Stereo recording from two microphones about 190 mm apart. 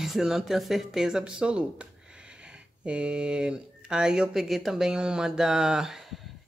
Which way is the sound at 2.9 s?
5° right (ahead or behind).